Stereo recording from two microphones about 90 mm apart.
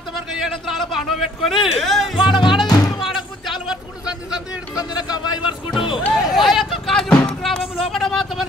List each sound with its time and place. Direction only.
0.1 s a man's voice: centre (ahead or behind)
2.2 s music: 60° left (ahead or behind)
2.7 s music: 45° left (ahead or behind)
3.0 s a sound: centre (ahead or behind)
4.7 s a man's voice: 50° left (ahead or behind)
6.1 s speech: 5° right (ahead or behind)
6.7 s music: 5° left (ahead or behind)